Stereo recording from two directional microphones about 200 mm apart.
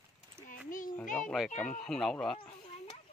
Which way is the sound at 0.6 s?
45° left (ahead or behind).